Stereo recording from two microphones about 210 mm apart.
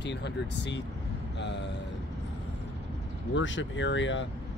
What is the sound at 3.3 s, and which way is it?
Speech, 60° left (ahead or behind).